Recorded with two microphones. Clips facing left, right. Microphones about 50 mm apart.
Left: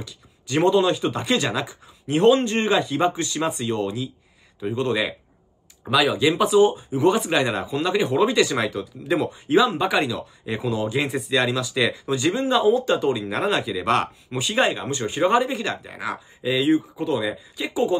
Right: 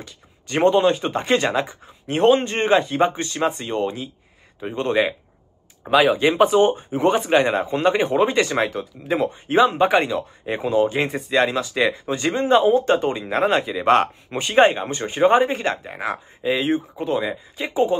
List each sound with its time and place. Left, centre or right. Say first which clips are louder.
0.6 s speech: right 2 dB; right
13.2 s speech: right 4 dB; right